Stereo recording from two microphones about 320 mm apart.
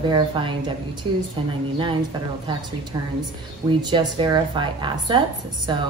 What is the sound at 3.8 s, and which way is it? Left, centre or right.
A woman's voice, centre.